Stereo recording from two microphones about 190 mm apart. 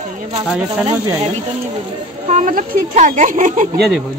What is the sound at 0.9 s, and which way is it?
Speech, 10° right (ahead or behind).